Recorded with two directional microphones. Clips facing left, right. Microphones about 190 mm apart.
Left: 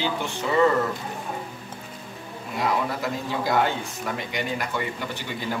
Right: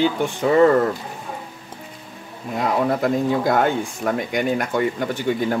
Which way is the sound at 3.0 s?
50° right (ahead or behind).